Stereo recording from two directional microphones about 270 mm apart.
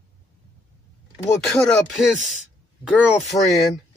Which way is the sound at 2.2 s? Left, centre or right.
Left.